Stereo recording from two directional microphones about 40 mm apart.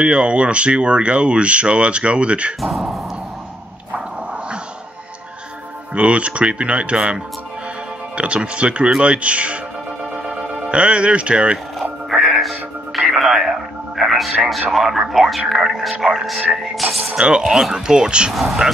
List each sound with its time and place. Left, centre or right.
0.0 s speech: right
2.6 s speech: centre
5.9 s speech: right
8.2 s speech: right
10.1 s music: right
12.2 s music: centre
14.7 s speech: centre
17.2 s speech: right
17.5 s speech: centre
17.7 s speech: centre
18.3 s speech: centre